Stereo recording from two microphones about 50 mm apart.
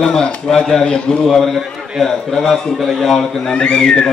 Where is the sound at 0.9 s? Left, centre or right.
Centre.